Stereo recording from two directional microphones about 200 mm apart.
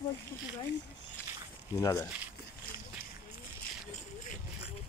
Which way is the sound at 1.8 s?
15° left (ahead or behind).